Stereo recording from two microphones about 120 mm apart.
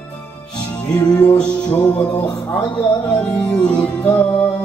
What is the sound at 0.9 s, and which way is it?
Music, 35° left (ahead or behind).